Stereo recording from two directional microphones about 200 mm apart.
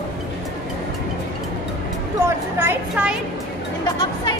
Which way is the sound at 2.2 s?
10° right (ahead or behind).